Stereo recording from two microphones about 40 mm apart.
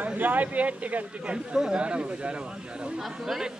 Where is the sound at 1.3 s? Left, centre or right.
Centre.